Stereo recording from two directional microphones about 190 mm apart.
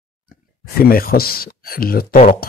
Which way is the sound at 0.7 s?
50° left (ahead or behind).